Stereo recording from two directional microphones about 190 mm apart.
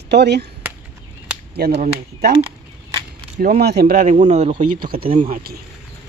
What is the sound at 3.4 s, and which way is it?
Speech, 55° right (ahead or behind).